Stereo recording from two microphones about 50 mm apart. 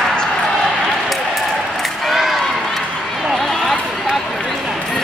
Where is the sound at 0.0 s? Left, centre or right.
Centre.